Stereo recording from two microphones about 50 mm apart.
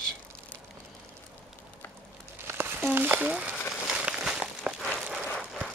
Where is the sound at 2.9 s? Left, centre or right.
Right.